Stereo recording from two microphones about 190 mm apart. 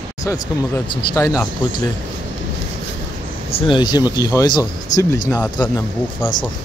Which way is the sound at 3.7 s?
20° left (ahead or behind).